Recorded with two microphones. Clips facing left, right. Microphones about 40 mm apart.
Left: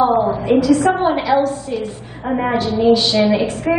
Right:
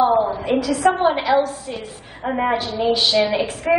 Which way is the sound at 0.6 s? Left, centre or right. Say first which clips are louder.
Left 2 dB; centre.